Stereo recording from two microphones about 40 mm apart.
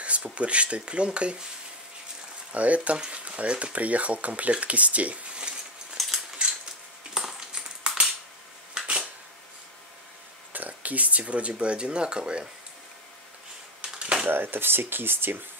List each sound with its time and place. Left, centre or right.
0.0 s speech: right
2.5 s speech: right
6.0 s cutlery: centre
6.4 s a sound: right
10.5 s speech: right
14.3 s speech: right